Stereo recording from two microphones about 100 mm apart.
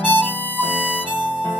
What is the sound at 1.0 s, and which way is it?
Music, 20° left (ahead or behind).